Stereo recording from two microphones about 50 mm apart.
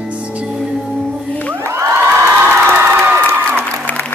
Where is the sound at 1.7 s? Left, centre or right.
Right.